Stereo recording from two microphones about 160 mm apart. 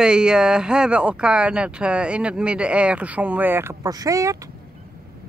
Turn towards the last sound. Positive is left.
turn(degrees=-20)  # may be behind; listen again after turning